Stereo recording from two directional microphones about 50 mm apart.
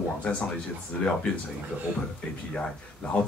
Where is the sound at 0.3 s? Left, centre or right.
Left.